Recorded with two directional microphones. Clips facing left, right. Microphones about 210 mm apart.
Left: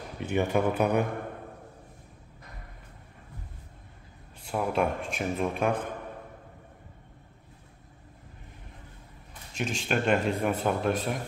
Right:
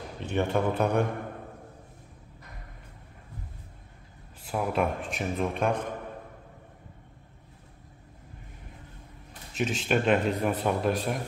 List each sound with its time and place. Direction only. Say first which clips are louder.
0.2 s speech: left 1 dB; 10° left (ahead or behind)
4.4 s speech: even; centre (ahead or behind)
9.5 s speech: right 3 dB; 5° right (ahead or behind)